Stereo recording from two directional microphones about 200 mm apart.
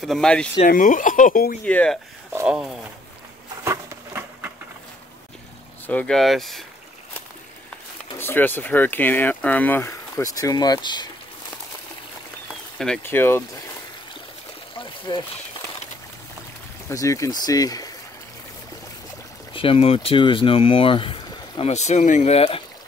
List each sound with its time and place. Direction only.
0.0 s speech: centre (ahead or behind)
0.7 s speech: 40° left (ahead or behind)
1.6 s speech: 5° left (ahead or behind)
2.3 s speech: 5° right (ahead or behind)
3.6 s a sound: 15° right (ahead or behind)
5.9 s speech: 5° left (ahead or behind)
8.2 s speech: 10° left (ahead or behind)
12.7 s speech: 5° left (ahead or behind)
14.8 s a sound: 25° left (ahead or behind)
16.9 s speech: 15° left (ahead or behind)
19.5 s speech: 25° left (ahead or behind)